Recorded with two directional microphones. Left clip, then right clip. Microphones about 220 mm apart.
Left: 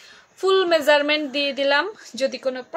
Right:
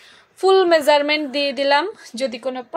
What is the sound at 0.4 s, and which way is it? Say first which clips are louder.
Speech: right 4 dB; 15° right (ahead or behind).